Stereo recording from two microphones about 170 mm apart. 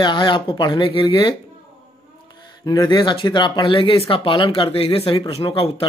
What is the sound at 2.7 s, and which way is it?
A man's voice, 25° left (ahead or behind).